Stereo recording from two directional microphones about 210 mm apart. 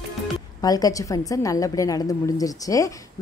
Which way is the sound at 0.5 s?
15° left (ahead or behind).